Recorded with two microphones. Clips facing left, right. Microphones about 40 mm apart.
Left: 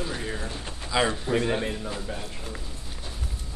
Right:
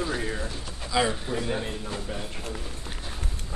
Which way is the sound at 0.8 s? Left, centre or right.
Centre.